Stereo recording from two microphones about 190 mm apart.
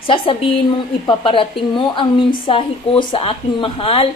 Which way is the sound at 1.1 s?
25° left (ahead or behind).